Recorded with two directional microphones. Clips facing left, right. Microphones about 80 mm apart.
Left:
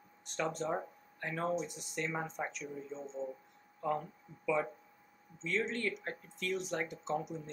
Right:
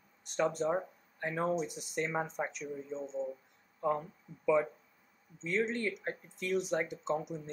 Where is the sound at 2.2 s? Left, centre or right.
Centre.